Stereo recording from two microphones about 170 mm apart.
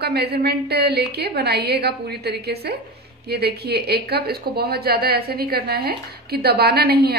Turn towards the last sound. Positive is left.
turn(degrees=-65)  # may be behind; listen again after turning